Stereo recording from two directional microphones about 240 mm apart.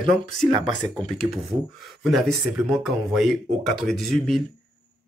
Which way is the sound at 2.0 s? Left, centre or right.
Centre.